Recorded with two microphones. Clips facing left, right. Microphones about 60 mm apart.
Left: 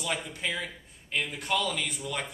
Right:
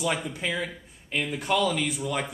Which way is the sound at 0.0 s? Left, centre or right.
Centre.